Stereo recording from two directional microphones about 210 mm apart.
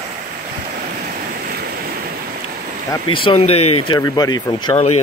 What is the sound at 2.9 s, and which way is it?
Speech, 25° left (ahead or behind).